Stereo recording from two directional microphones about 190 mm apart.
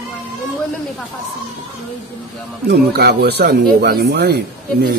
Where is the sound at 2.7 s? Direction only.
60° right (ahead or behind).